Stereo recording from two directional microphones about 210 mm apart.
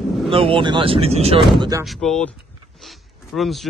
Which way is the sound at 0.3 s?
25° right (ahead or behind).